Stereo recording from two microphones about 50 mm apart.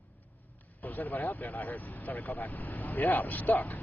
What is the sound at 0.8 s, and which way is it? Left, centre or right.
Speech, left.